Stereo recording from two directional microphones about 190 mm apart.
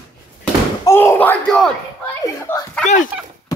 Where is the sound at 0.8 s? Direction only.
15° left (ahead or behind).